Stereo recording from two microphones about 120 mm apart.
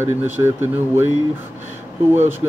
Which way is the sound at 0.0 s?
20° right (ahead or behind).